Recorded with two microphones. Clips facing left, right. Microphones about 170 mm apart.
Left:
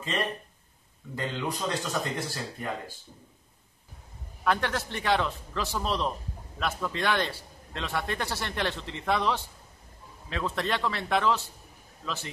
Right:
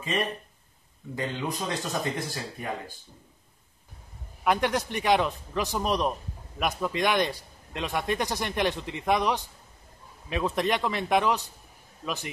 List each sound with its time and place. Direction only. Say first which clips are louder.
0.0 s a man's voice: right 2 dB; 10° right (ahead or behind)
4.5 s a man's voice: right 3 dB; 15° right (ahead or behind)